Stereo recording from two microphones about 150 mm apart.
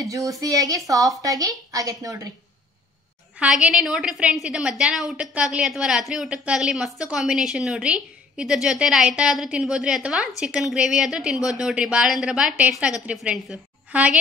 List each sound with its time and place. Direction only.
0.0 s a woman's voice: 20° right (ahead or behind)
3.3 s a woman's voice: 5° right (ahead or behind)